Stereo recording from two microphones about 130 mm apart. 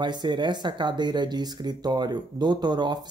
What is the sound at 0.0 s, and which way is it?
Speech, 35° right (ahead or behind).